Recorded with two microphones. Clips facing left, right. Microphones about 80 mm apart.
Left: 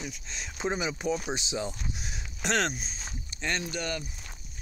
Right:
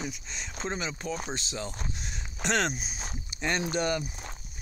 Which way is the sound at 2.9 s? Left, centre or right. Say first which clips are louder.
Right 2 dB; centre.